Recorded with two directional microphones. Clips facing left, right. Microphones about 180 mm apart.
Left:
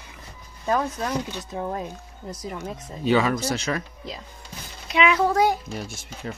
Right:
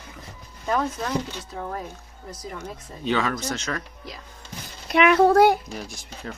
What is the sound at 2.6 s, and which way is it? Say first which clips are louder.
Speech: left 3 dB; 10° left (ahead or behind).